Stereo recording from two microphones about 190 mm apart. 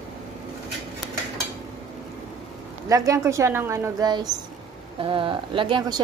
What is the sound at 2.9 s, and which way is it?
A woman's voice, 15° right (ahead or behind).